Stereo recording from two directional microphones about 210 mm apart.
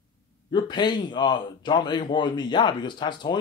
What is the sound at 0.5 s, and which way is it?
A man's voice, 20° left (ahead or behind).